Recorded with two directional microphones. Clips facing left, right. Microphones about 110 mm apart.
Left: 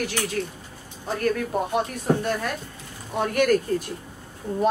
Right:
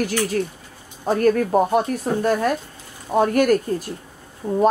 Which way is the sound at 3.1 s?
40° right (ahead or behind).